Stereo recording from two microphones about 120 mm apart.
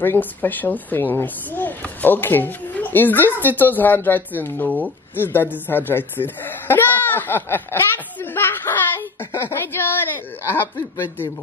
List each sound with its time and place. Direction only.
0.0 s speech: 15° left (ahead or behind)
5.7 s laughter: 20° left (ahead or behind)